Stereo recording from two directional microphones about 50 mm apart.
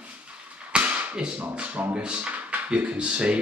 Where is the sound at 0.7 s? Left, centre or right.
Right.